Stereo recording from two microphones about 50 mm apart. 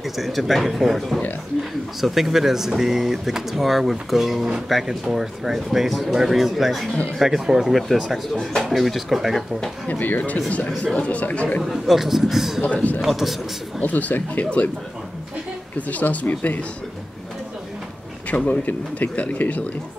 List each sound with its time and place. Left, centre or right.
0.2 s speech: centre
9.8 s speech: left
11.6 s a man's voice: centre
12.6 s speech: left
13.0 s speech: centre
13.8 s speech: left
15.9 s speech: left
18.3 s speech: left